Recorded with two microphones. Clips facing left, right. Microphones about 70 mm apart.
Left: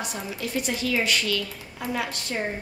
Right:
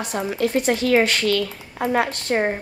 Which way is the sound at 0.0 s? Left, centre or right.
Right.